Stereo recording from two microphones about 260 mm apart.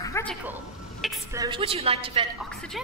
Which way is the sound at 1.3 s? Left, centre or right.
Centre.